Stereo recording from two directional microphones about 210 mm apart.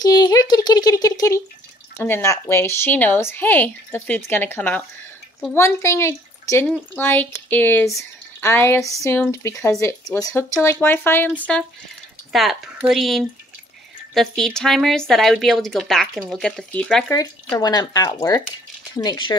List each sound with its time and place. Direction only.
0.0 s a sound: 20° left (ahead or behind)
2.0 s speech: 10° left (ahead or behind)
12.3 s speech: centre (ahead or behind)
17.1 s speech: 15° left (ahead or behind)